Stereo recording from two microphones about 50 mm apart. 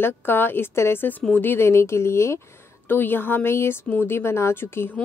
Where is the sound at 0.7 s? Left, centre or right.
Left.